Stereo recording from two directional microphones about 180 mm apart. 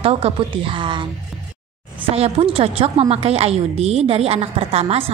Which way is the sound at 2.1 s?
35° right (ahead or behind).